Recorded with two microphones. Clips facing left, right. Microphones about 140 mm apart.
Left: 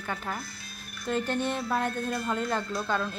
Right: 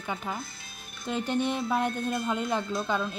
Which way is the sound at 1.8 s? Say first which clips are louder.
Right 1 dB; 20° right (ahead or behind).